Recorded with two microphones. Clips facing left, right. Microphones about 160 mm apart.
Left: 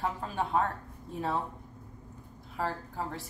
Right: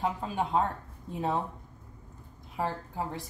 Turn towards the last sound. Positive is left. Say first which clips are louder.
# right 2 dB
turn(degrees=-15)  # may be behind; listen again after turning